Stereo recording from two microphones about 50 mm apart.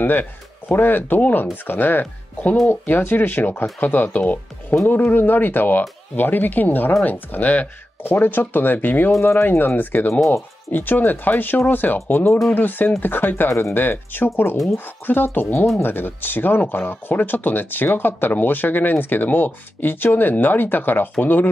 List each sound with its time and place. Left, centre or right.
0.0 s speech: left
9.2 s speech: left
9.9 s speech: left
13.5 s speech: left
13.7 s speech: left